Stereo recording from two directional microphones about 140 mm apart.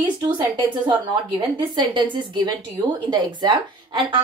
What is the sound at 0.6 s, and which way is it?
A woman's voice, 35° right (ahead or behind).